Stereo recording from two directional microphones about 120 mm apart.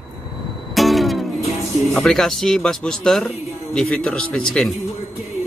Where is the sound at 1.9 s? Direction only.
5° left (ahead or behind).